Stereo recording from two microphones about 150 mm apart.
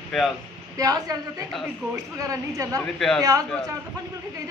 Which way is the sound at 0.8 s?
25° right (ahead or behind).